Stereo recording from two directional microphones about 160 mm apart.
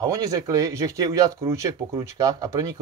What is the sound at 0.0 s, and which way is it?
Speech, 20° right (ahead or behind).